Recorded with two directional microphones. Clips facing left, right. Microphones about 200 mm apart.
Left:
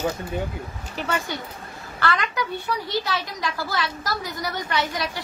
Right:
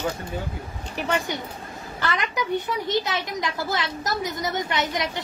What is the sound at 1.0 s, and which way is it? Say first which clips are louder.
Speech: right 2 dB; 15° right (ahead or behind).